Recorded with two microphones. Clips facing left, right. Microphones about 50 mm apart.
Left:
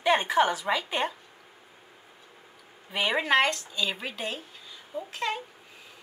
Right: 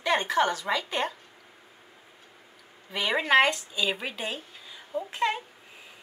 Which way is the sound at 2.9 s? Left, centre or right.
Centre.